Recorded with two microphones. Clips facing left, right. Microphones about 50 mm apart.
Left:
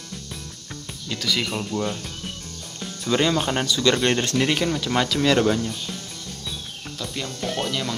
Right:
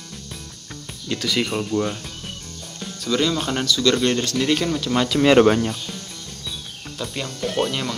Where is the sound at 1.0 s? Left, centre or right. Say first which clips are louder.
Right 3 dB; centre.